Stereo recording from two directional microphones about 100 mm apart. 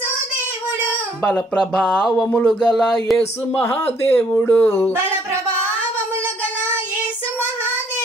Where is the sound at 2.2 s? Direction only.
15° left (ahead or behind).